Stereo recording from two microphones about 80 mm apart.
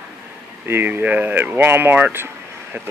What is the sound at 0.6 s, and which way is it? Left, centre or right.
Speech, right.